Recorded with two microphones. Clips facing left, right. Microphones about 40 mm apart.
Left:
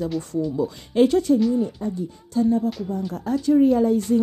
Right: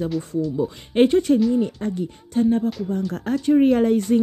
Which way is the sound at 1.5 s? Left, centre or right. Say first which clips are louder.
Right 2 dB; right.